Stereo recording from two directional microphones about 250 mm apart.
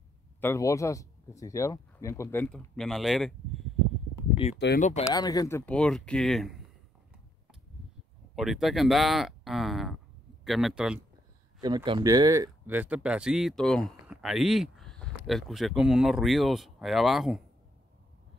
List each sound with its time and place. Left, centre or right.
0.4 s speech: centre
4.6 s speech: left
5.0 s speech: centre
8.4 s speech: centre
11.6 s speech: centre